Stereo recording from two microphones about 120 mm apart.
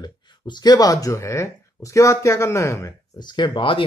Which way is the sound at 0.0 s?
35° left (ahead or behind).